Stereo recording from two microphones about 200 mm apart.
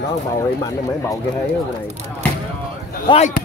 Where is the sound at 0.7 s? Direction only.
15° left (ahead or behind).